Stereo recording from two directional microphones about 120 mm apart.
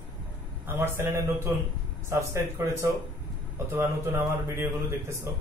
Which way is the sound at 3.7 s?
25° right (ahead or behind).